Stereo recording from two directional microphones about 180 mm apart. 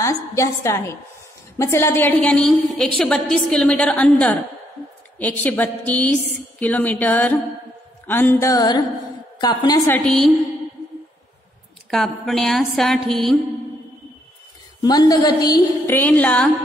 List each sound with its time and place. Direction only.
0.0 s a woman's voice: 15° left (ahead or behind)
9.9 s a woman's voice: 5° left (ahead or behind)
11.9 s a woman's voice: centre (ahead or behind)
14.8 s a woman's voice: 20° left (ahead or behind)
16.0 s a woman's voice: 10° left (ahead or behind)